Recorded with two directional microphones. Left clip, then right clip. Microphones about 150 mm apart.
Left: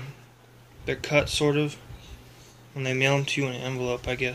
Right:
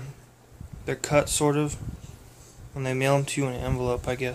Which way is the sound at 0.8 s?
15° right (ahead or behind).